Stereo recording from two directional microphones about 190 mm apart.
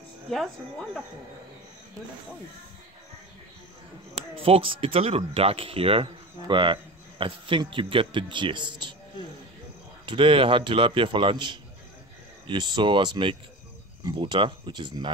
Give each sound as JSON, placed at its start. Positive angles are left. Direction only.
{"t": 0.3, "sound": "speech", "side_deg": 0}
{"t": 4.4, "sound": "speech", "side_deg": -30}
{"t": 10.0, "sound": "speech", "side_deg": -25}